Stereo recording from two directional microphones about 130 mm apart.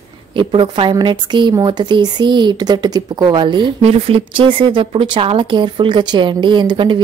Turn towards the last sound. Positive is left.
turn(degrees=-35)  # may be behind; listen again after turning